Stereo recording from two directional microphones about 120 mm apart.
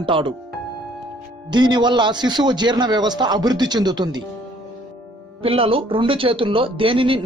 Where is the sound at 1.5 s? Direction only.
40° right (ahead or behind).